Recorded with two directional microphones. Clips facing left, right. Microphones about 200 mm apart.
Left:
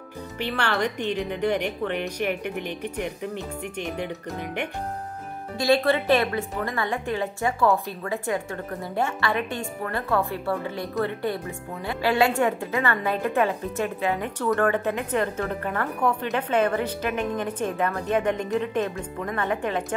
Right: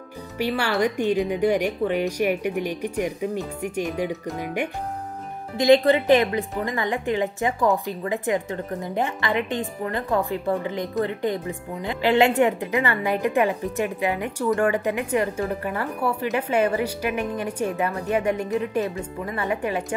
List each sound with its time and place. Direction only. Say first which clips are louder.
0.4 s a woman's voice: right 4 dB; 10° right (ahead or behind)